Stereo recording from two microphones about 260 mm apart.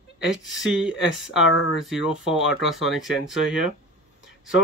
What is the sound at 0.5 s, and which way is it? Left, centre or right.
Speech, centre.